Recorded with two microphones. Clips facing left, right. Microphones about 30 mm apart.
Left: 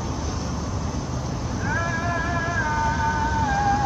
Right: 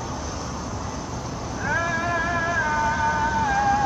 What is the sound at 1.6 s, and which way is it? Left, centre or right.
Vehicle, centre.